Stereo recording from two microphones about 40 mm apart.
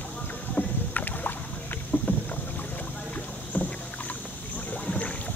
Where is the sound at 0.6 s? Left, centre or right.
Left.